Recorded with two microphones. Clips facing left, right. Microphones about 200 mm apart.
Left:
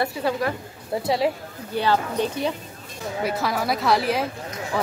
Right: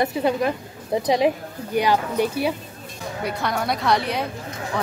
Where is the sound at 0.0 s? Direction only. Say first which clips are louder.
Right 3 dB; 20° right (ahead or behind).